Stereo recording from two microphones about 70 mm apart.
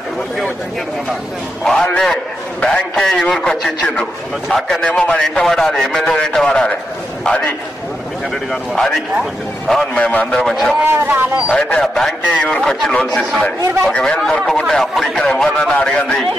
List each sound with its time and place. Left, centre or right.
1.6 s a man's voice: centre
4.8 s a man's voice: centre
5.2 s a man's voice: centre
8.7 s a man's voice: centre
9.9 s a man's voice: centre
10.4 s a man's voice: centre
10.8 s speech: right
11.5 s a man's voice: centre
11.8 s a man's voice: centre
12.3 s a man's voice: centre
12.6 s a man's voice: centre